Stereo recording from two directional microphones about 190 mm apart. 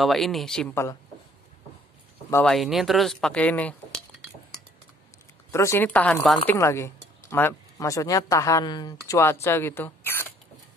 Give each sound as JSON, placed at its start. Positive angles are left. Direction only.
{"t": 0.0, "sound": "speech", "side_deg": 0}
{"t": 2.4, "sound": "speech", "side_deg": 0}
{"t": 5.5, "sound": "speech", "side_deg": 15}